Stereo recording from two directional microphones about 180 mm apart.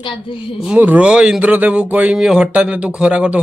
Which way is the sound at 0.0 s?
30° left (ahead or behind).